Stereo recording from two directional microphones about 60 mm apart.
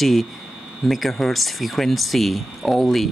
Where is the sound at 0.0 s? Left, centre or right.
Centre.